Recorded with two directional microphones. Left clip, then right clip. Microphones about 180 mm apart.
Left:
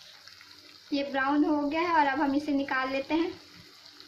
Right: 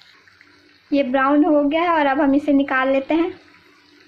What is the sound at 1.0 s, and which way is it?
A woman's voice, 50° right (ahead or behind).